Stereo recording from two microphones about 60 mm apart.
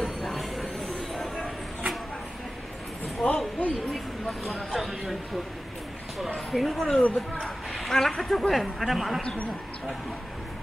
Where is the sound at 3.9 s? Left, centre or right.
Centre.